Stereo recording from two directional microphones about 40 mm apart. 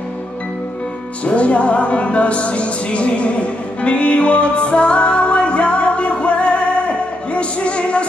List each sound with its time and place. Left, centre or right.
1.2 s music: left